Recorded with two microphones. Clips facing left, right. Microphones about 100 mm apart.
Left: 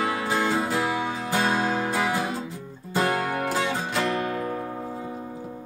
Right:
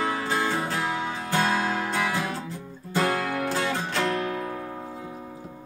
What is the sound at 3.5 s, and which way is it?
Music, 10° left (ahead or behind).